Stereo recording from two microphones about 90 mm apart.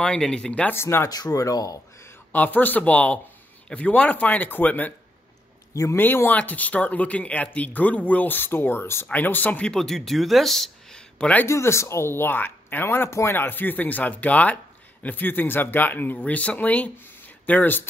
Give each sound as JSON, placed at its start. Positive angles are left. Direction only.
{"t": 0.0, "sound": "speech", "side_deg": 10}
{"t": 0.7, "sound": "speech", "side_deg": 25}
{"t": 1.0, "sound": "speech", "side_deg": 45}
{"t": 2.3, "sound": "speech", "side_deg": 20}
{"t": 5.9, "sound": "speech", "side_deg": 20}
{"t": 11.4, "sound": "speech", "side_deg": 30}